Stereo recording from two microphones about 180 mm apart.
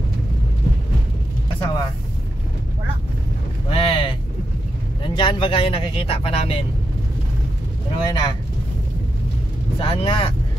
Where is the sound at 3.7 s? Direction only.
30° left (ahead or behind).